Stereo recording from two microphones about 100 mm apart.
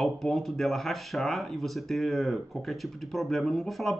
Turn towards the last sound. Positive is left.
turn(degrees=0)  # may be behind; listen again after turning